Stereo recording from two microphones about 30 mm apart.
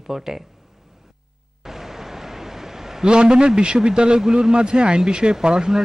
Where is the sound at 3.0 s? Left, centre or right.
Right.